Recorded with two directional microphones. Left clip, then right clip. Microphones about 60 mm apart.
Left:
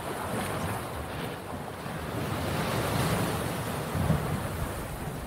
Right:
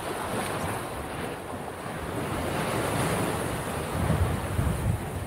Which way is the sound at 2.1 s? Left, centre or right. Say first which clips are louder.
Right 2 dB; left.